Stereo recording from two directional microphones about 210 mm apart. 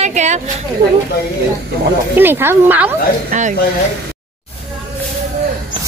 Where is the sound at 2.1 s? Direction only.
10° right (ahead or behind).